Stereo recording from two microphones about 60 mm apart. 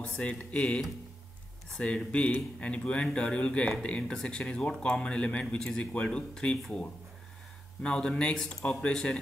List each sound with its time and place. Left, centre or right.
0.2 s speech: left
1.8 s speech: left
7.8 s speech: centre
8.4 s speech: centre
8.6 s speech: centre